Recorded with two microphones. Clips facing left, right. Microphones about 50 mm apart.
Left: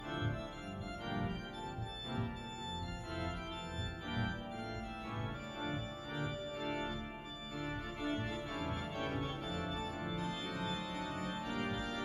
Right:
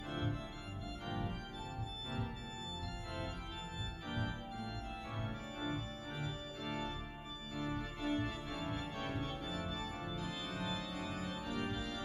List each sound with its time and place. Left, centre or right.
1.0 s organ: centre
5.7 s organ: centre
11.1 s organ: left